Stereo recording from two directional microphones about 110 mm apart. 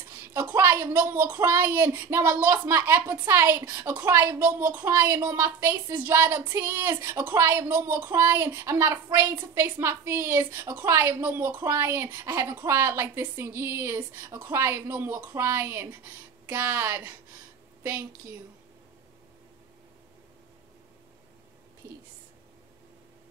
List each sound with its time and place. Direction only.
0.1 s a woman's voice: 20° right (ahead or behind)